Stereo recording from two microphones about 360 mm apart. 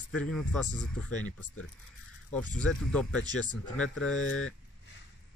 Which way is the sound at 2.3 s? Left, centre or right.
Centre.